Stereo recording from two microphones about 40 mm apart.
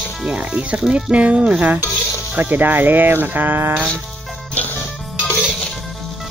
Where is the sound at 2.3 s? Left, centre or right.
Right.